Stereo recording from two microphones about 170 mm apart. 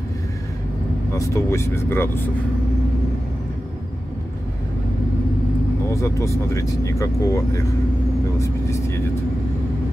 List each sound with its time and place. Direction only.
1.1 s speech: 20° left (ahead or behind)
5.9 s speech: 15° left (ahead or behind)